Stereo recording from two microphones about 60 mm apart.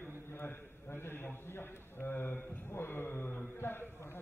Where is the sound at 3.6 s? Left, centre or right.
Left.